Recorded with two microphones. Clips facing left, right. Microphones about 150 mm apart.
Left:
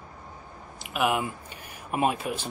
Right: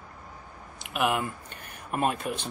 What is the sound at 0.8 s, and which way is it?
Speech, 5° left (ahead or behind).